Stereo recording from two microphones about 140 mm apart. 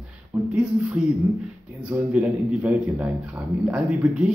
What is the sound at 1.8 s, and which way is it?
A man's voice, 10° right (ahead or behind).